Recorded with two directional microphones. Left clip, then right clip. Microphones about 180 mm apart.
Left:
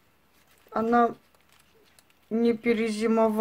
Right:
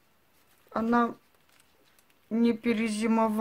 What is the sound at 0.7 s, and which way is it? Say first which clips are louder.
Speech: left 4 dB; 40° right (ahead or behind).